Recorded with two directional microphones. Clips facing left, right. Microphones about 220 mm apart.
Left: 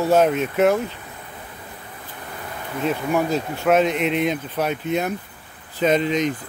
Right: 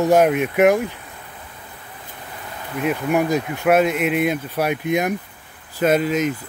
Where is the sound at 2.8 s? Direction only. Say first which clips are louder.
Right 2 dB; 15° right (ahead or behind).